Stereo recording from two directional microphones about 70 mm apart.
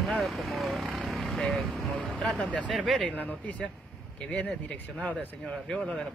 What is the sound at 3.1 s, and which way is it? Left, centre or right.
Speech, left.